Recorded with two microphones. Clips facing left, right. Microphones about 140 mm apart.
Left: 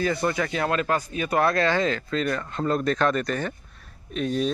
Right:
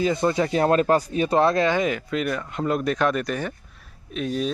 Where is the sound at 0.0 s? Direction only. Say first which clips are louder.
Right 3 dB; 20° right (ahead or behind).